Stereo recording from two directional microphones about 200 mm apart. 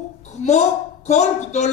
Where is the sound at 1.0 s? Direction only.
35° left (ahead or behind).